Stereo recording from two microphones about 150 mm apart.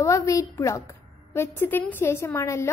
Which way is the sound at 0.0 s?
20° left (ahead or behind).